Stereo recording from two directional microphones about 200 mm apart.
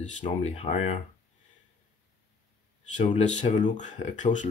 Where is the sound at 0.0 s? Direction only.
30° left (ahead or behind).